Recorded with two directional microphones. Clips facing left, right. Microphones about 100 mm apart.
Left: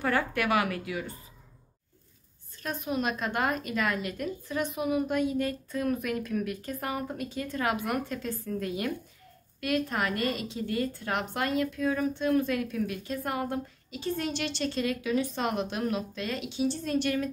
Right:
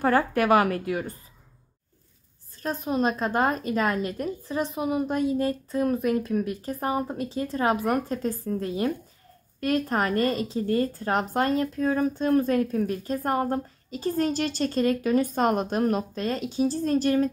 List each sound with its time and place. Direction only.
0.0 s speech: 40° right (ahead or behind)
2.6 s speech: 35° right (ahead or behind)